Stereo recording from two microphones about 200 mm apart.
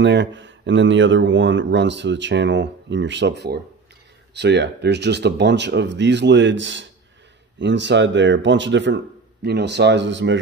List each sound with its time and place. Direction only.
0.0 s speech: 65° right (ahead or behind)